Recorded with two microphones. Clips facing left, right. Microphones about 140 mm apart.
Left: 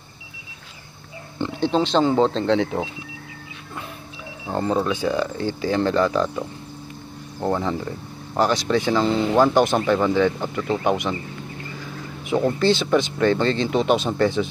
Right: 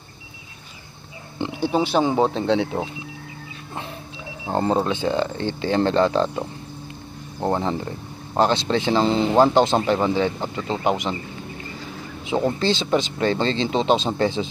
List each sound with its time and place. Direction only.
1.5 s speech: 10° right (ahead or behind)
4.5 s speech: 30° right (ahead or behind)
12.3 s speech: 20° right (ahead or behind)